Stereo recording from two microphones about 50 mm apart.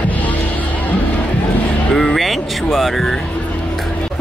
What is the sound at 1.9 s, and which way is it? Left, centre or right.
Speech, centre.